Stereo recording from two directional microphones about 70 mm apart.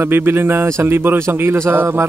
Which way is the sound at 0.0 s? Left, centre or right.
Right.